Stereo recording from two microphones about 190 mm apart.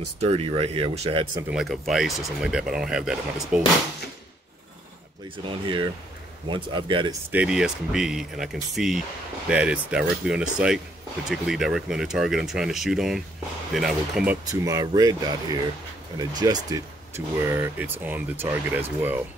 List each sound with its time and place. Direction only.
0.2 s speech: 30° right (ahead or behind)
1.5 s speech: centre (ahead or behind)
5.4 s speech: 25° right (ahead or behind)
7.2 s speech: 5° right (ahead or behind)
14.4 s speech: 20° right (ahead or behind)